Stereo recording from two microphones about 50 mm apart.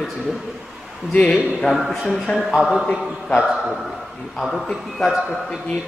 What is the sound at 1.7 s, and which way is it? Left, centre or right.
A man's voice, centre.